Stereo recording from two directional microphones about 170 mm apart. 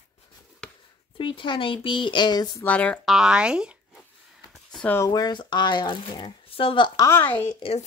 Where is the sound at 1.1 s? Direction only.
30° left (ahead or behind).